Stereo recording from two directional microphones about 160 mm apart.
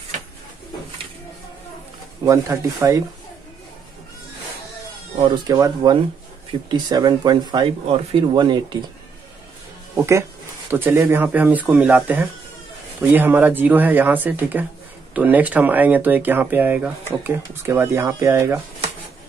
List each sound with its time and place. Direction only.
2.2 s speech: 20° right (ahead or behind)
5.3 s speech: 25° right (ahead or behind)
9.9 s speech: 15° right (ahead or behind)